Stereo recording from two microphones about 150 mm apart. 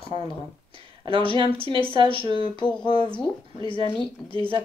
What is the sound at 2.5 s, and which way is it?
Speech, 30° left (ahead or behind).